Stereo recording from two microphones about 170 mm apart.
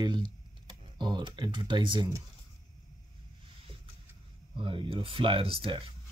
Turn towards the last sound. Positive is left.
turn(degrees=-30)  # may be behind; listen again after turning